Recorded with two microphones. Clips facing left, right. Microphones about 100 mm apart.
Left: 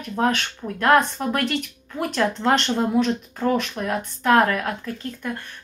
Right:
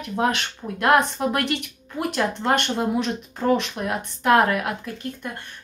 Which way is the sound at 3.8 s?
20° right (ahead or behind).